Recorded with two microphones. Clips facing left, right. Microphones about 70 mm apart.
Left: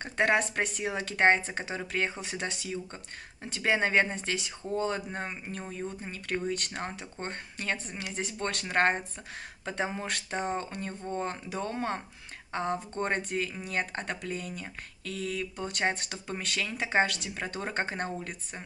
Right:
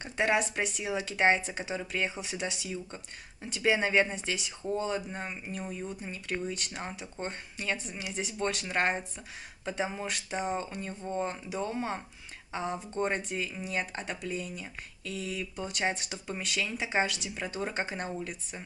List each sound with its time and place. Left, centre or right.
0.0 s speech: left
6.1 s speech: left